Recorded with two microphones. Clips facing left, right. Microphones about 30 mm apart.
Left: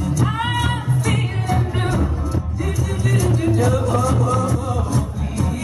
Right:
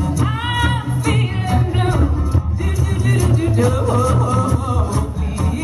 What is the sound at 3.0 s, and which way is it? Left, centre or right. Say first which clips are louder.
Music: right 1 dB; centre.